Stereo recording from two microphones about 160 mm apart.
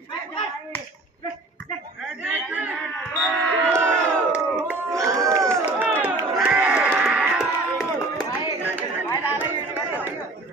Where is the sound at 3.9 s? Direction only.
5° left (ahead or behind).